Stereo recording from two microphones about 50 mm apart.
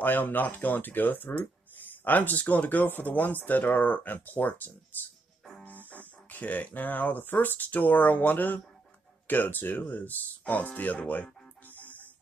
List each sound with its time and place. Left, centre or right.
0.0 s speech: left
11.6 s music: left